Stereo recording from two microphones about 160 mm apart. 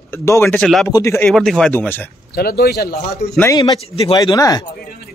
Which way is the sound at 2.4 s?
75° left (ahead or behind).